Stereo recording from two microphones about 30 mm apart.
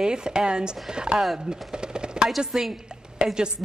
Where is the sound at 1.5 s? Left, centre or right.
Right.